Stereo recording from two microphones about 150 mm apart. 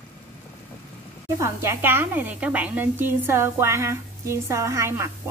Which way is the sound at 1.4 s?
20° right (ahead or behind).